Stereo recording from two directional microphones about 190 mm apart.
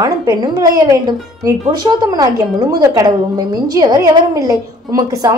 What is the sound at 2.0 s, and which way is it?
A woman's voice, 20° right (ahead or behind).